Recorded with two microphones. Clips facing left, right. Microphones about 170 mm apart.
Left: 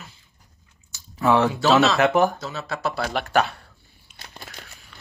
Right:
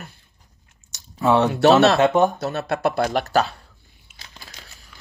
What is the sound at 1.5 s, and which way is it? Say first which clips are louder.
Speech: right 4 dB; 65° right (ahead or behind).